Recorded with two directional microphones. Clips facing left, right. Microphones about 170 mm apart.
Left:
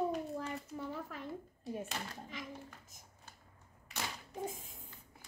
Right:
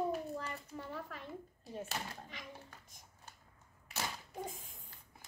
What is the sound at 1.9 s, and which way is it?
Speech, centre (ahead or behind).